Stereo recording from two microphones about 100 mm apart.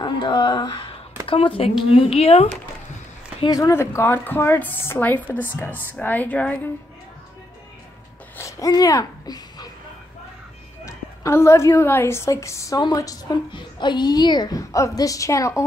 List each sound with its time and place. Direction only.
0.0 s a sound: 50° left (ahead or behind)
1.2 s speech: 65° left (ahead or behind); by 2.5 s 90° left
3.4 s a woman's voice: 35° left (ahead or behind)
3.7 s a woman's voice: 25° left (ahead or behind)
8.4 s speech: 35° left (ahead or behind)
10.9 s a woman's voice: 30° left (ahead or behind)
13.5 s a woman's voice: 50° left (ahead or behind)
14.6 s a woman's voice: 35° left (ahead or behind)